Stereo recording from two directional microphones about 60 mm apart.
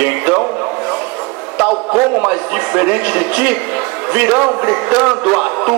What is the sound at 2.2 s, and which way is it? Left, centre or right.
A man's voice, right.